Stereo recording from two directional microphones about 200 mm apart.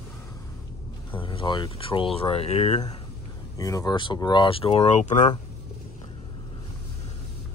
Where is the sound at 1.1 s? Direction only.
25° left (ahead or behind).